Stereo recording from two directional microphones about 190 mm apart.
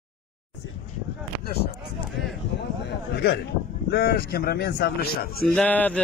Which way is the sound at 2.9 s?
60° left (ahead or behind).